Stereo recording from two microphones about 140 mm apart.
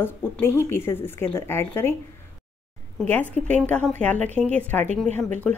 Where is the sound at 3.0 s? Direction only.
10° left (ahead or behind).